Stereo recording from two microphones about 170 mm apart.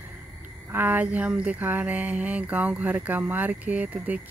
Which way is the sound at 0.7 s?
10° right (ahead or behind).